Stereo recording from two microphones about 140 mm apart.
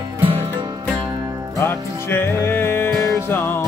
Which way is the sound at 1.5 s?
15° left (ahead or behind).